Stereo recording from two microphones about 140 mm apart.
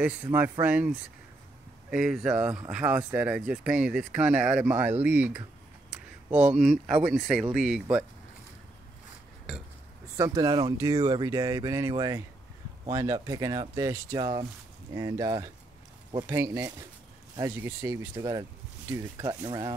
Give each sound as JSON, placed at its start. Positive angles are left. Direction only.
{"t": 0.0, "sound": "speech", "side_deg": -15}
{"t": 10.1, "sound": "speech", "side_deg": -25}